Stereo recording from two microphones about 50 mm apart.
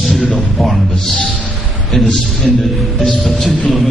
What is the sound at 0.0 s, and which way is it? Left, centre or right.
Music, centre.